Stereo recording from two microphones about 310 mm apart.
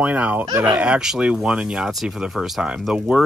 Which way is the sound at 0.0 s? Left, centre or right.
Centre.